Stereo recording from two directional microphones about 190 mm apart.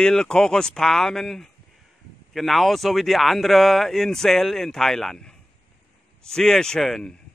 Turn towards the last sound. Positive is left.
turn(degrees=5)  # may be behind; listen again after turning